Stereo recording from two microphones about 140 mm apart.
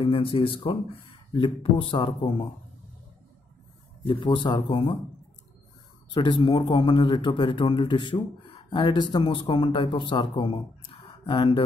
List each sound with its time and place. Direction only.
0.0 s a man's voice: 40° left (ahead or behind)
4.0 s a man's voice: 35° left (ahead or behind)
6.1 s a man's voice: 35° left (ahead or behind)